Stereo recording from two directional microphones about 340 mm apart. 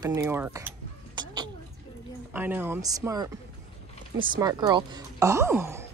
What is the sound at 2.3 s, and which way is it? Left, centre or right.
Speech, centre.